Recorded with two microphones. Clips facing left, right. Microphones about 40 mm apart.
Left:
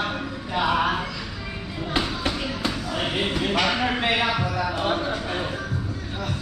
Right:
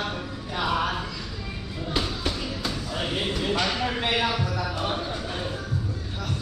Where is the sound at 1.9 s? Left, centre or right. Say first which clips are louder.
Left 3 dB; left.